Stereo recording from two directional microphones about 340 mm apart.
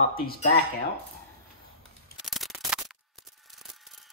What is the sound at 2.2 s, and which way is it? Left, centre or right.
Scissors, centre.